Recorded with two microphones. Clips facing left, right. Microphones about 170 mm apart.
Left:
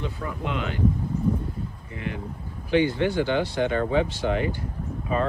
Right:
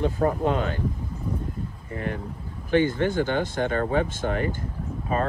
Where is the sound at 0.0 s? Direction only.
45° right (ahead or behind).